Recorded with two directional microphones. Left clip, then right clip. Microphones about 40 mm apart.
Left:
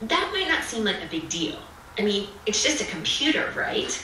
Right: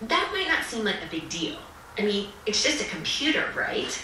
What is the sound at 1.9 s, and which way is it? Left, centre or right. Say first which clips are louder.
Speech: left 2 dB; centre.